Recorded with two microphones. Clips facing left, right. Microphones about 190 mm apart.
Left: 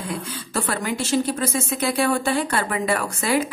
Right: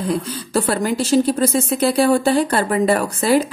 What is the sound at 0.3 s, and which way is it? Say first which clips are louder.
A woman's voice: right 7 dB; 35° right (ahead or behind).